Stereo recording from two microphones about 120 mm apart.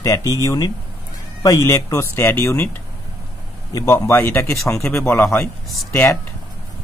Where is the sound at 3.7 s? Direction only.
25° left (ahead or behind).